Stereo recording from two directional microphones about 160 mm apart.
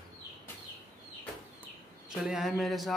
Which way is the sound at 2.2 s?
Centre (ahead or behind).